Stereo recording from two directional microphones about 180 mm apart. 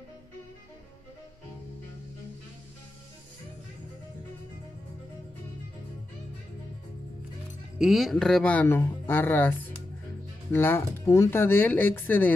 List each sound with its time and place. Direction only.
7.8 s speech: centre (ahead or behind)